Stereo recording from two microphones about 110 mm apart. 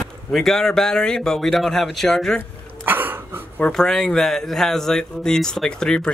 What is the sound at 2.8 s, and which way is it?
Cough, 20° right (ahead or behind).